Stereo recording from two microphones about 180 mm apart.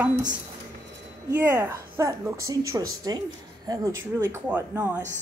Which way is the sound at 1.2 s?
15° right (ahead or behind).